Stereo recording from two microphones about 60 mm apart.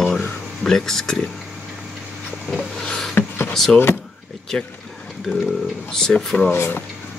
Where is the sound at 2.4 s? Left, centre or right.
Centre.